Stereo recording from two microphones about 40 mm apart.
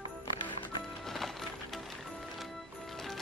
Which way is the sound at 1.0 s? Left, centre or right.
Centre.